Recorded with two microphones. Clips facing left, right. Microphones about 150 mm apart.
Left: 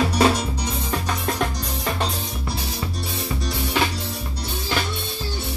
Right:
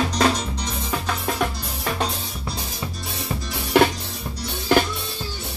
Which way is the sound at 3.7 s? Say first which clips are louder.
Right 7 dB; 55° right (ahead or behind).